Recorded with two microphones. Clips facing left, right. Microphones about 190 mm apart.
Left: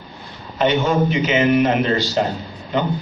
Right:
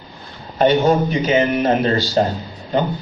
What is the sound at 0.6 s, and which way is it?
A man's voice, 40° right (ahead or behind).